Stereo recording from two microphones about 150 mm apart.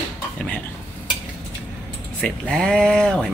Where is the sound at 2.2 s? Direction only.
5° left (ahead or behind).